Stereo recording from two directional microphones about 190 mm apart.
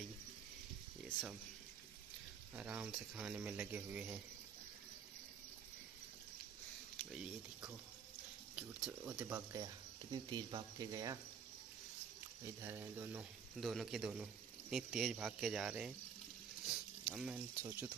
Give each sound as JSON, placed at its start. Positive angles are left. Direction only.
{"t": 2.5, "sound": "speech", "side_deg": -5}
{"t": 8.5, "sound": "speech", "side_deg": -5}
{"t": 12.6, "sound": "speech", "side_deg": -15}
{"t": 13.6, "sound": "speech", "side_deg": 0}
{"t": 16.6, "sound": "a sound", "side_deg": 0}
{"t": 17.6, "sound": "speech", "side_deg": -10}